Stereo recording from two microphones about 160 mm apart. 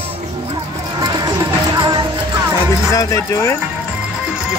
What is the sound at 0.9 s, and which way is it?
Music, 25° right (ahead or behind).